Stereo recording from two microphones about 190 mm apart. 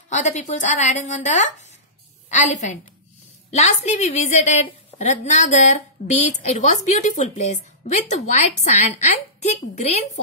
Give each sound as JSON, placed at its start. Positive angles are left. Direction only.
{"t": 0.1, "sound": "a woman's voice", "side_deg": 40}